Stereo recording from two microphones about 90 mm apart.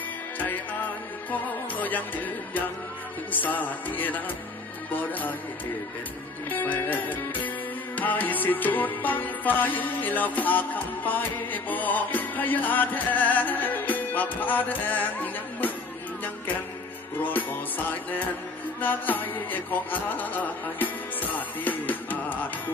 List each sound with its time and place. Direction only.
1.3 s music: 20° left (ahead or behind)
6.5 s music: 20° left (ahead or behind)
17.2 s music: 20° left (ahead or behind)